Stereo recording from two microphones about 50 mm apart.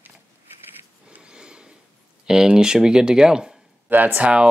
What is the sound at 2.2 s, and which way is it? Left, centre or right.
Speech, centre.